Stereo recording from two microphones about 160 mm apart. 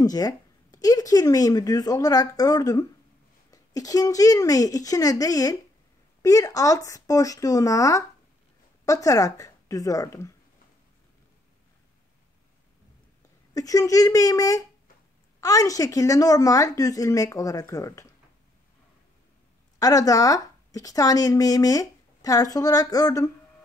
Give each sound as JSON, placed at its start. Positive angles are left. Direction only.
{"t": 0.0, "sound": "speech", "side_deg": 25}
{"t": 13.6, "sound": "speech", "side_deg": 20}
{"t": 19.8, "sound": "speech", "side_deg": 20}